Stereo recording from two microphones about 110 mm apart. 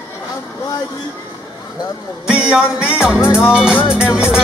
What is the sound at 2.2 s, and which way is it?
Music, 10° right (ahead or behind).